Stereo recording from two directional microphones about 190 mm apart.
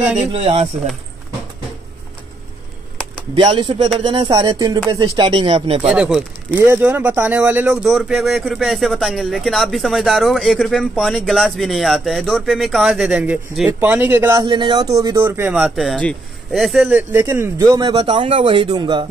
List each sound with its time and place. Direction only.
0.3 s speech: 30° right (ahead or behind)
3.4 s speech: 25° right (ahead or behind)
5.9 s speech: 5° right (ahead or behind)
14.4 s speech: 25° right (ahead or behind)
15.5 s speech: centre (ahead or behind)
17.1 s speech: 15° right (ahead or behind)